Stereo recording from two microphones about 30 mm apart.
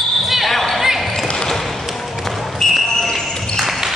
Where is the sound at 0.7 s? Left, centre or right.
Centre.